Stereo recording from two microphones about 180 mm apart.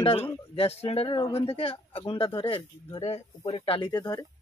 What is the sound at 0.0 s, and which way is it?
Speech, 30° left (ahead or behind).